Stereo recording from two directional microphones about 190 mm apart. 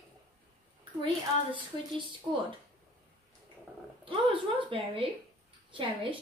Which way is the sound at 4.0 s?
25° right (ahead or behind).